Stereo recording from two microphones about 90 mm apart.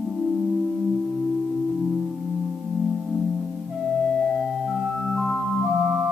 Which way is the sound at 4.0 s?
10° left (ahead or behind).